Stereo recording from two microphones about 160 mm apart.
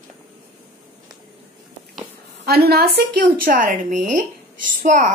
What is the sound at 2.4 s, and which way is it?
A woman's voice, 75° right (ahead or behind).